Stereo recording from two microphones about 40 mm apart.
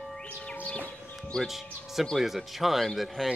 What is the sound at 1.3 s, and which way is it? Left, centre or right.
Speech, left.